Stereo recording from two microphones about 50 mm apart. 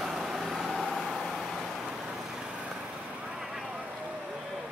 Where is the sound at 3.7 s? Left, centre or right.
Right.